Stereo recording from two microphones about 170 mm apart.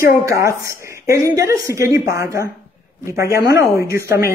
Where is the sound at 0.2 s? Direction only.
20° right (ahead or behind).